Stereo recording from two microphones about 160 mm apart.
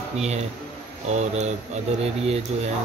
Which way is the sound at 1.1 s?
45° right (ahead or behind).